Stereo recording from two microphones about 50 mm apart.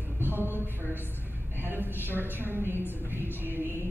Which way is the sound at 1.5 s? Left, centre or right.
Right.